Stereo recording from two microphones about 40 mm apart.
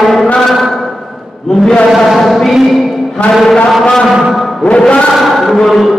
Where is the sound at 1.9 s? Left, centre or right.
Centre.